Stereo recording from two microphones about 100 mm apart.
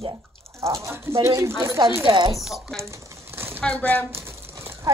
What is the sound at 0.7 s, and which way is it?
Speech, 30° right (ahead or behind).